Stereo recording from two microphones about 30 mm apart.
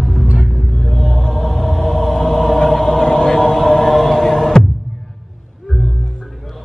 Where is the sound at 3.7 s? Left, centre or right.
Centre.